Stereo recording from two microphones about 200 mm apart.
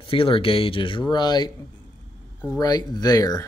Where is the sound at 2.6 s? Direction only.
20° left (ahead or behind).